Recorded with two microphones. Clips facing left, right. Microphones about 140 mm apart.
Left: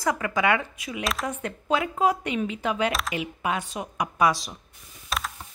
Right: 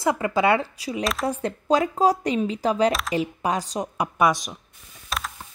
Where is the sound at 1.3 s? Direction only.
35° right (ahead or behind).